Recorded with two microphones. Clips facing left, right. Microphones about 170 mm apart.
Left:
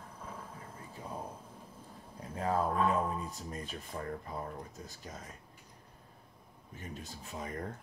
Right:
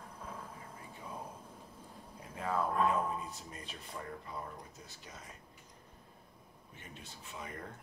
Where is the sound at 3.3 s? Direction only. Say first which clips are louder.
Left 6 dB; 45° left (ahead or behind).